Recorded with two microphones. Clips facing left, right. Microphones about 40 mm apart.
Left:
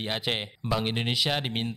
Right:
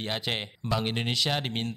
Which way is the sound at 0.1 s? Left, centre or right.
Centre.